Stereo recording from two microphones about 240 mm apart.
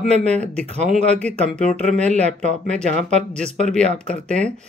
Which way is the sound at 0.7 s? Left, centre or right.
Right.